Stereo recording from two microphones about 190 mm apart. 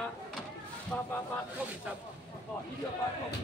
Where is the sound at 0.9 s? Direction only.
10° left (ahead or behind).